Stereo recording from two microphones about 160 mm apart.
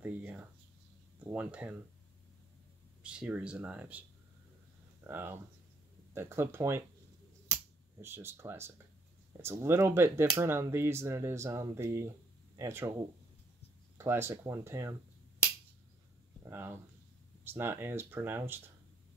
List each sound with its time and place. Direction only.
0.0 s a sound: 10° right (ahead or behind)
1.2 s speech: 10° right (ahead or behind)
3.0 s speech: 5° right (ahead or behind)
5.0 s speech: 15° right (ahead or behind)
7.4 s a sound: 15° right (ahead or behind)
9.4 s speech: 15° right (ahead or behind)
13.9 s speech: 15° right (ahead or behind)
16.4 s a sound: 15° right (ahead or behind)
17.5 s speech: 15° right (ahead or behind)